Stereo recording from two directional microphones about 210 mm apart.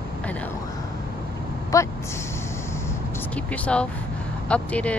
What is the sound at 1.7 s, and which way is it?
Speech, 15° left (ahead or behind).